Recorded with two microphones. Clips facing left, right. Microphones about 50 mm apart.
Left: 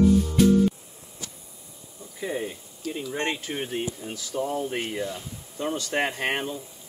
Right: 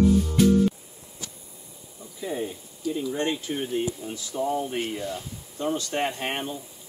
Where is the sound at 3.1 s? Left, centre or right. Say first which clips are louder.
Left 1 dB; left.